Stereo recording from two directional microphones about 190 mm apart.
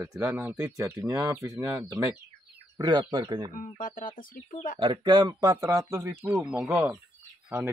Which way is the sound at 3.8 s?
45° left (ahead or behind).